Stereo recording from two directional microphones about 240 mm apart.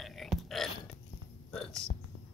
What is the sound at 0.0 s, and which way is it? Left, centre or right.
Burping, centre.